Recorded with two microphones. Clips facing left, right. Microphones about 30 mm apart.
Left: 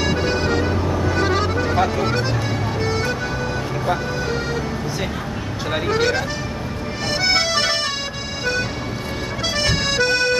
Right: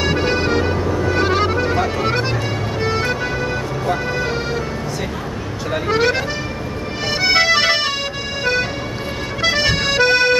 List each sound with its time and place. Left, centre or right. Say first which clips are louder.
0.0 s music: right 2 dB; centre
5.9 s music: right 3 dB; centre
9.4 s accordion: right 5 dB; centre